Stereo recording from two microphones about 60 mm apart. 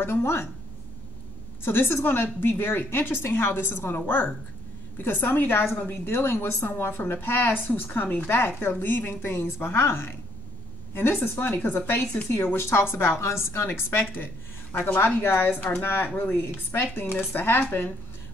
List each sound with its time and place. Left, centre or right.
0.0 s a woman's voice: left
1.6 s a woman's voice: left
14.1 s a sound: left
15.0 s a woman's voice: left